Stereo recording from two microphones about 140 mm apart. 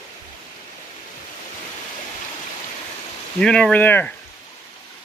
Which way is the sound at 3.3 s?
5° left (ahead or behind).